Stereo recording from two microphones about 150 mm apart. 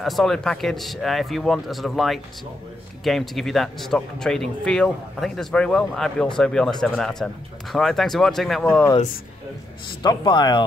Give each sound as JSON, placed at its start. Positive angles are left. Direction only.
{"t": 0.0, "sound": "speech", "side_deg": 0}
{"t": 10.0, "sound": "speech", "side_deg": 30}